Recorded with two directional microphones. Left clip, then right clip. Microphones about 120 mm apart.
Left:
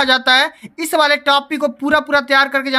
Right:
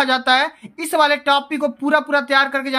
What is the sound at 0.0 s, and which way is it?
Speech, 25° left (ahead or behind).